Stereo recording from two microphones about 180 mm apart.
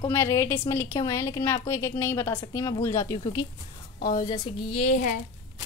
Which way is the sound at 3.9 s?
55° left (ahead or behind).